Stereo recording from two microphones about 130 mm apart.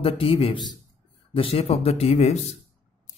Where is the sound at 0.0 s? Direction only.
45° left (ahead or behind).